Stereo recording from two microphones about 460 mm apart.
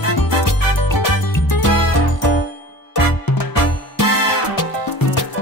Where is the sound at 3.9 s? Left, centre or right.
Left.